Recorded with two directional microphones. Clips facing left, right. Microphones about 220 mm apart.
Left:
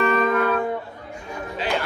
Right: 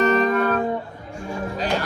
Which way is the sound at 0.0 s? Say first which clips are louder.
Right 2 dB; 40° right (ahead or behind).